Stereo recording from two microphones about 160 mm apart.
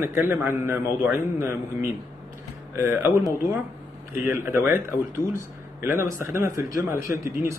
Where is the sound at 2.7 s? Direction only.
15° right (ahead or behind).